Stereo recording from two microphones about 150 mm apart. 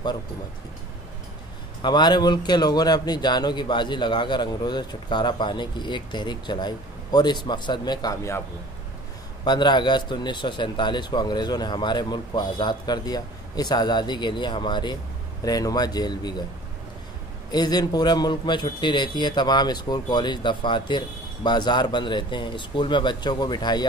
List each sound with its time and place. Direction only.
1.8 s speech: 30° left (ahead or behind)
9.4 s speech: 30° left (ahead or behind)
17.5 s speech: 25° left (ahead or behind)